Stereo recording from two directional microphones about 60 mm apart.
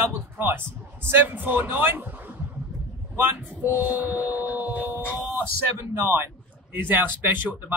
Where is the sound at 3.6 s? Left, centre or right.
Right.